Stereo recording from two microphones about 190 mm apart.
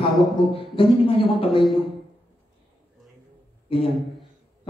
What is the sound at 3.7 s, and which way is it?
Speech, 30° left (ahead or behind).